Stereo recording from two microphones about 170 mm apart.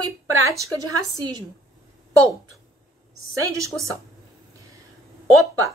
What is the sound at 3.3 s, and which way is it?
Speech, 20° right (ahead or behind).